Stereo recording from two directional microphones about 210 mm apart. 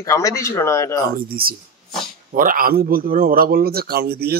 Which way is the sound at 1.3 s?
45° right (ahead or behind).